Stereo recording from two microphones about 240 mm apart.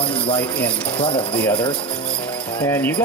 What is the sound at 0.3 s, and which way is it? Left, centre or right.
Speech, centre.